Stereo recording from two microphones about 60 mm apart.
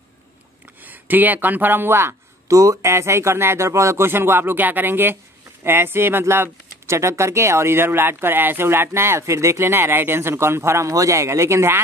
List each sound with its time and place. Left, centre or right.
0.8 s speech: right
2.4 s speech: right
2.8 s speech: right